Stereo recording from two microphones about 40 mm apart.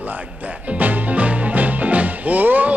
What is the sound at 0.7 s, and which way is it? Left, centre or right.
Music, right.